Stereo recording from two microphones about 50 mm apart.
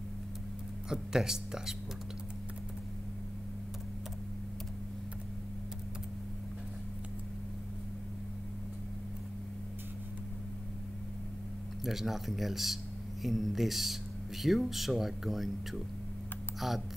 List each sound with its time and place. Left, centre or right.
0.8 s speech: centre
11.8 s speech: centre